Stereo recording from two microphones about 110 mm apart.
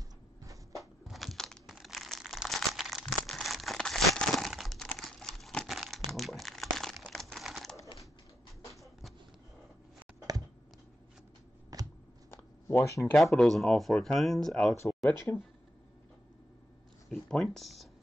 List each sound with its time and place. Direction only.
0.7 s crumpling: centre (ahead or behind)
11.7 s shuffling cards: 35° right (ahead or behind)
12.3 s a sound: 25° left (ahead or behind)
13.0 s speech: centre (ahead or behind)
15.0 s speech: 20° left (ahead or behind)
17.1 s speech: 5° left (ahead or behind)